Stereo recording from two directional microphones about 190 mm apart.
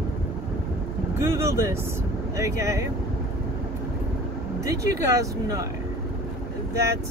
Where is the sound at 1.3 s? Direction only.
15° right (ahead or behind).